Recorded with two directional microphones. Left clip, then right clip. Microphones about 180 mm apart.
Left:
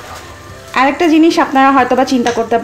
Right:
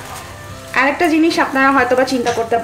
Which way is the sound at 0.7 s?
35° left (ahead or behind).